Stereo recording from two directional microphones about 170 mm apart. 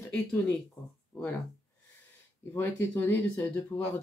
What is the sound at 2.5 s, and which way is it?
Speech, 10° left (ahead or behind).